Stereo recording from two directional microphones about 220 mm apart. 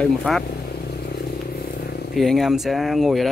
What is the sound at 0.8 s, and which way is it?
Vehicle, 45° left (ahead or behind).